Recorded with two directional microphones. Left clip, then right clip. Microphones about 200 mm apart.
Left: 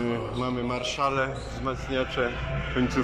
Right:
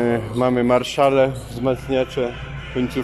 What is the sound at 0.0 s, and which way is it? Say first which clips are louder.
Speech: right 10 dB; 35° right (ahead or behind).